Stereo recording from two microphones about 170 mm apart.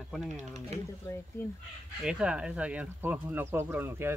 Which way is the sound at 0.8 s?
15° left (ahead or behind).